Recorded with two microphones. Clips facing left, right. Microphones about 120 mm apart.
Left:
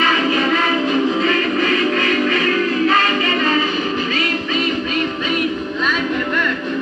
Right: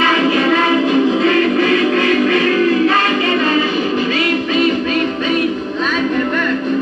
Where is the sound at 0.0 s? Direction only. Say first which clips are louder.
Right 3 dB; 70° right (ahead or behind).